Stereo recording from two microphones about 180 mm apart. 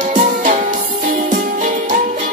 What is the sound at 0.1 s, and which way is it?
Music, 45° right (ahead or behind).